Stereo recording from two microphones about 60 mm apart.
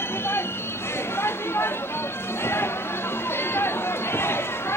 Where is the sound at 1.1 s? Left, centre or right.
Left.